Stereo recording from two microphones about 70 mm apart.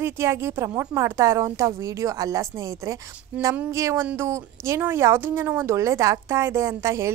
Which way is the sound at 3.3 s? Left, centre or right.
Right.